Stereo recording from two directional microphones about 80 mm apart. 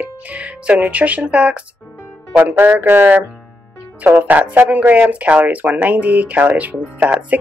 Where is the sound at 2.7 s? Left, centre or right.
Right.